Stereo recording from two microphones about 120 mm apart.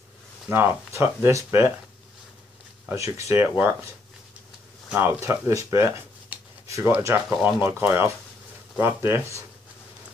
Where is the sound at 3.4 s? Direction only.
15° right (ahead or behind).